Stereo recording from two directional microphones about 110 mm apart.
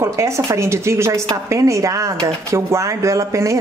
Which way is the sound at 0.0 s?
25° right (ahead or behind).